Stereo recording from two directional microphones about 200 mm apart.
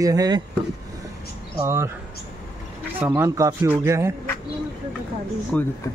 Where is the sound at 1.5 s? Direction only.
15° right (ahead or behind).